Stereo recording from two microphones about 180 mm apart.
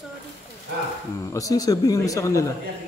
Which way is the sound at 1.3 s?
20° left (ahead or behind).